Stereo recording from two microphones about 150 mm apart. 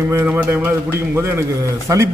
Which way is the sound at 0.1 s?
10° right (ahead or behind).